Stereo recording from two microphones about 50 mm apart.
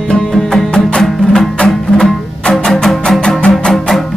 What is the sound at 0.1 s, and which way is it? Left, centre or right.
Music, centre.